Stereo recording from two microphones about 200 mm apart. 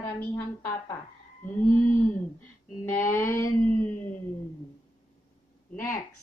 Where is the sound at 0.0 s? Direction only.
10° left (ahead or behind).